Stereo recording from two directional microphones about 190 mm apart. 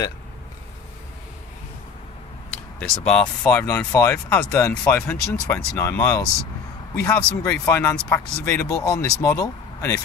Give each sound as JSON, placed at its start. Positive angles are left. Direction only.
{"t": 2.8, "sound": "speech", "side_deg": 5}
{"t": 7.0, "sound": "speech", "side_deg": 5}